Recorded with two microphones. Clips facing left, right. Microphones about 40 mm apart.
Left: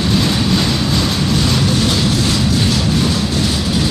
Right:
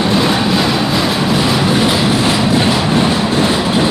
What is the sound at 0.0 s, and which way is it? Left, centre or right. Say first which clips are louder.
Train: right 3 dB; centre.